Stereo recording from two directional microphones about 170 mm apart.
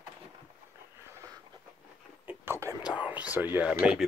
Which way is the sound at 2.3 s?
15° right (ahead or behind).